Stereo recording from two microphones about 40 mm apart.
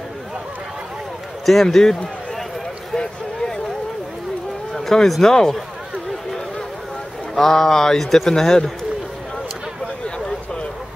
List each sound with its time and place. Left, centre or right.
1.4 s speech: centre
2.9 s a sound: centre
4.7 s speech: centre
7.3 s speech: centre